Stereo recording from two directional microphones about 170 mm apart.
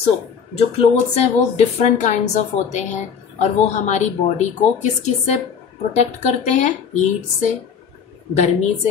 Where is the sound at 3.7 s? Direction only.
40° left (ahead or behind).